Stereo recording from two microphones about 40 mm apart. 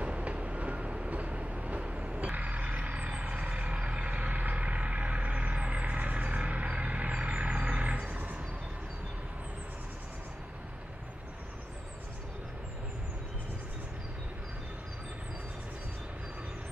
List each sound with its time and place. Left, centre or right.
0.0 s vehicle: right